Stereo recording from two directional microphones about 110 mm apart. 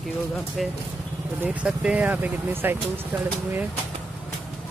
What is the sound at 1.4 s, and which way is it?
Speech, 15° right (ahead or behind).